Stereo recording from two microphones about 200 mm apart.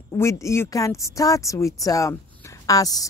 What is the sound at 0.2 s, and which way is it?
Speech, 15° left (ahead or behind).